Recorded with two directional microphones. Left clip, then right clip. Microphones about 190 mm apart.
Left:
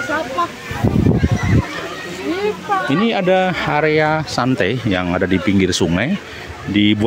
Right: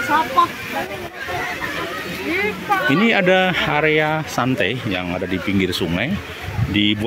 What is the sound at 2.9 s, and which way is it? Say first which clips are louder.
Speech: right 1 dB; 5° left (ahead or behind).